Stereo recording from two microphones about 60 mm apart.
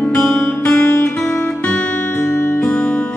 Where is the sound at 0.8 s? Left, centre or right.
Left.